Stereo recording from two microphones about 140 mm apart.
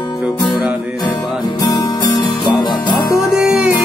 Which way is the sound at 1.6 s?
25° left (ahead or behind).